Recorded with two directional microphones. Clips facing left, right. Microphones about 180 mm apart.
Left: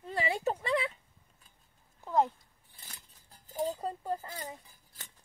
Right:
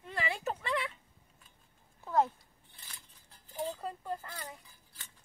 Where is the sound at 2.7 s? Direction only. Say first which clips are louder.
Left 2 dB; 45° left (ahead or behind).